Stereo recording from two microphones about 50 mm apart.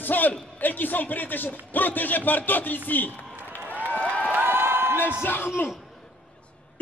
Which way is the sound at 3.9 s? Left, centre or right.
Left.